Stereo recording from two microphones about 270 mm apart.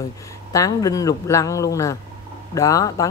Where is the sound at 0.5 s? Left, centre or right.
Centre.